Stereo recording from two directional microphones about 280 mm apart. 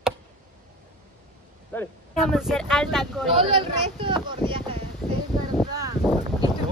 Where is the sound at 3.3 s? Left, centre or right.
Centre.